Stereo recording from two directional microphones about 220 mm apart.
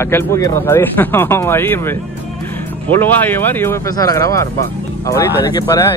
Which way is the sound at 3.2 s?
10° left (ahead or behind).